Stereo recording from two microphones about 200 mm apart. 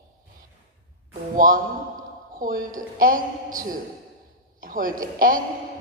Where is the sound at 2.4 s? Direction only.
45° right (ahead or behind).